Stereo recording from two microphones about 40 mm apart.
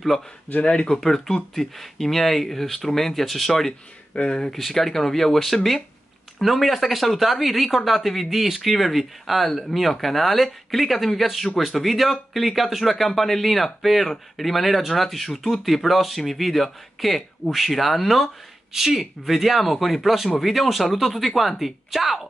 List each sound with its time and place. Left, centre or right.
1.0 s speech: centre
4.1 s speech: left
4.5 s speech: centre